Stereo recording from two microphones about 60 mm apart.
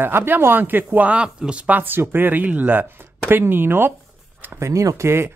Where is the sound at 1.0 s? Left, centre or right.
Centre; by 3.9 s right.